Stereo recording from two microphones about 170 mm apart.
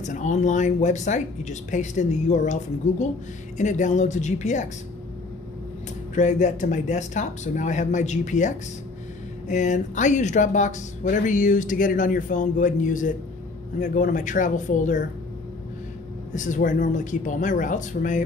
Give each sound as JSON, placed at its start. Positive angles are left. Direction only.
{"t": 0.0, "sound": "speech", "side_deg": 45}
{"t": 6.1, "sound": "speech", "side_deg": 45}
{"t": 16.3, "sound": "speech", "side_deg": 50}